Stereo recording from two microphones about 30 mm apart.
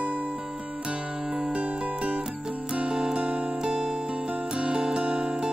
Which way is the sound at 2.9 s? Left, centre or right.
Right.